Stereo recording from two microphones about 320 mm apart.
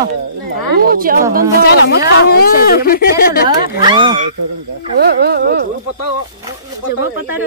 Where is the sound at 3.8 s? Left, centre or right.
Centre.